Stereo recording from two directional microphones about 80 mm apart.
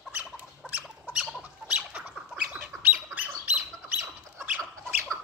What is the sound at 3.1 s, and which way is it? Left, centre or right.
Squawk, right.